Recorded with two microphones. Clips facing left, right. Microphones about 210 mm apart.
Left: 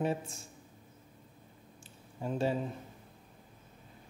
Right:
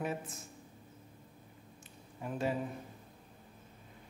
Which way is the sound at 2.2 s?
30° left (ahead or behind).